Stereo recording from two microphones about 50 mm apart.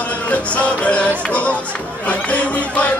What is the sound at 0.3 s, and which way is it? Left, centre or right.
Music, left.